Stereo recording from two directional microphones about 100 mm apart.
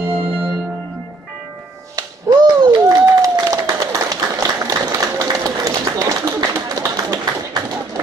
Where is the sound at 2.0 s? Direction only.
40° right (ahead or behind).